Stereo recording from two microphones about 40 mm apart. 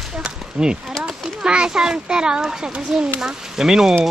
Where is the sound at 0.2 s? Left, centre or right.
Right.